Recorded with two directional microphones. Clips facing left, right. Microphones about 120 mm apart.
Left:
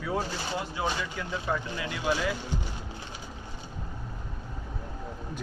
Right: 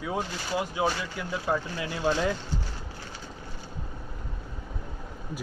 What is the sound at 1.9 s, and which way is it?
Speech, 35° right (ahead or behind).